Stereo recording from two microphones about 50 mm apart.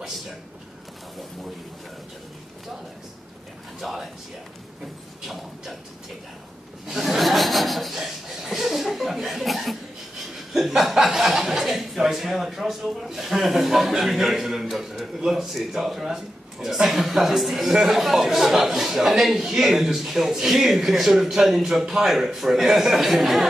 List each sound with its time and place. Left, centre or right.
3.8 s speech: centre
5.2 s a sound: centre
6.9 s chuckle: centre
10.5 s speech: centre